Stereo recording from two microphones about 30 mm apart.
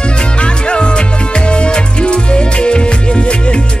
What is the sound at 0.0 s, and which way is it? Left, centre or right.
Music, left.